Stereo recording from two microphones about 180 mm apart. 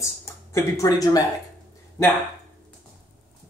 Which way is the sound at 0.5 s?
20° left (ahead or behind).